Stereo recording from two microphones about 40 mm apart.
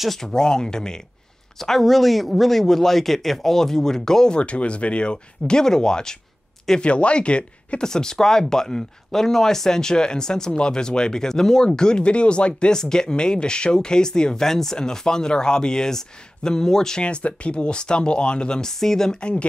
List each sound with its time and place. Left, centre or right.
0.2 s speech: centre
1.6 s speech: centre
4.4 s speech: left
6.8 s speech: left
7.8 s speech: centre
17.0 s speech: left; by 19.1 s centre